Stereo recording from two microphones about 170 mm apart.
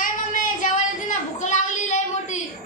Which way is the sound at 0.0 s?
50° left (ahead or behind).